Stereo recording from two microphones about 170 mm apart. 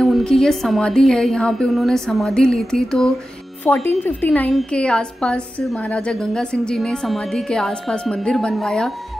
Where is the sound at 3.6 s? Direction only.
15° left (ahead or behind).